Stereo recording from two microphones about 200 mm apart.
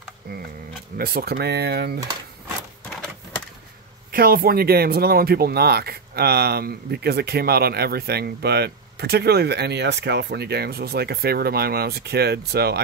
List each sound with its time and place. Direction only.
0.9 s speech: 50° right (ahead or behind)
4.1 s speech: 50° right (ahead or behind)